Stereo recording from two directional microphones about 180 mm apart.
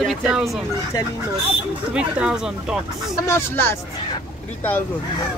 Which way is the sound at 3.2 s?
15° left (ahead or behind).